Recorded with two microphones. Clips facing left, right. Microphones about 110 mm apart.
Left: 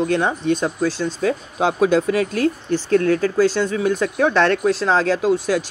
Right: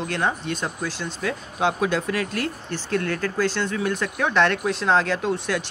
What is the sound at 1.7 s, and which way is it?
Speech, 25° left (ahead or behind).